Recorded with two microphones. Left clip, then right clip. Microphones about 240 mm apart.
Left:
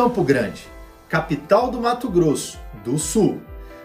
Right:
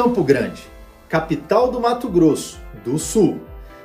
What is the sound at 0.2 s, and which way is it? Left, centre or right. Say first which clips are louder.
Speech: right 2 dB; centre.